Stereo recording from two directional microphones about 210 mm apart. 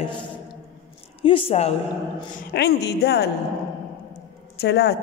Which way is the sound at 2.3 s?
50° left (ahead or behind).